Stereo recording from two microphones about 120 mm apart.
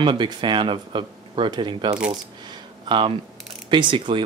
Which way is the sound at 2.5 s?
40° right (ahead or behind).